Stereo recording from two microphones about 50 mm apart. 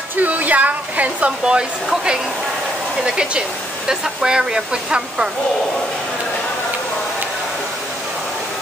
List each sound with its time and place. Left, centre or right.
0.2 s hair dryer: right
1.4 s speech: centre
3.2 s speech: centre